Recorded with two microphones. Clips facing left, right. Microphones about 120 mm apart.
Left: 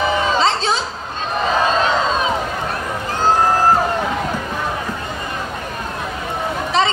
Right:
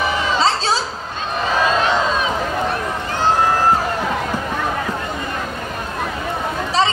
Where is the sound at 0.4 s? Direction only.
35° right (ahead or behind).